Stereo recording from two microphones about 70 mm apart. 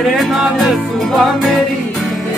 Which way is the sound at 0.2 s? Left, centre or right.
Centre.